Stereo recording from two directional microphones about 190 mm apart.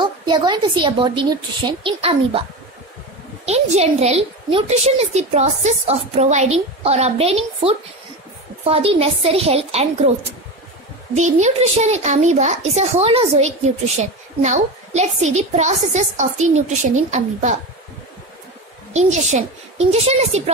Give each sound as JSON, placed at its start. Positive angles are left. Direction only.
{"t": 0.0, "sound": "a woman's voice", "side_deg": -25}
{"t": 3.4, "sound": "a woman's voice", "side_deg": -35}
{"t": 11.1, "sound": "a woman's voice", "side_deg": -40}
{"t": 18.9, "sound": "a woman's voice", "side_deg": -35}